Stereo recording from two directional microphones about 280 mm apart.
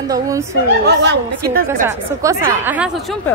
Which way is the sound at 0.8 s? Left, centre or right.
Right.